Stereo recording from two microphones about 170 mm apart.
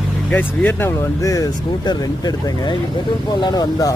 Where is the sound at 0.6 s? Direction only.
10° left (ahead or behind).